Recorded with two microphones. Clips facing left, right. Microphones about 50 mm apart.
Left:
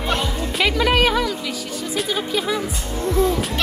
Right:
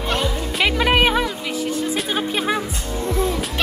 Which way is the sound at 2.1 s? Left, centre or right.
Right.